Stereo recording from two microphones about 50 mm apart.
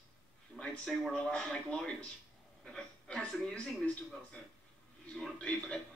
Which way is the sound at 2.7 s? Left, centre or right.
Centre.